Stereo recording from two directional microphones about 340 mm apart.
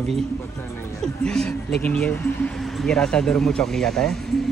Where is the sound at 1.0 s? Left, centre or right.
Centre.